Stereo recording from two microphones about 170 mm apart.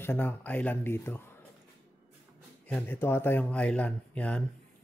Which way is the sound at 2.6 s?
10° left (ahead or behind).